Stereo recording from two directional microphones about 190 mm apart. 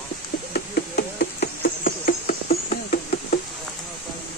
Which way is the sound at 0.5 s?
55° left (ahead or behind).